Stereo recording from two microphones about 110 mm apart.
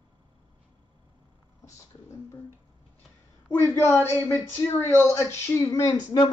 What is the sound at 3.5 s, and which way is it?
Speech, 25° left (ahead or behind).